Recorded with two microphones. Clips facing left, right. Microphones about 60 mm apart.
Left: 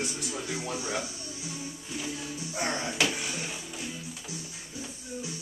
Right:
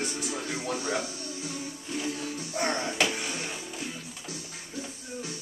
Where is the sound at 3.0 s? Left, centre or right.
Centre.